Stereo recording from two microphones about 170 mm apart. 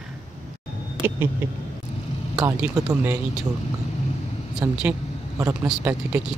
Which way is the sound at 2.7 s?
20° right (ahead or behind).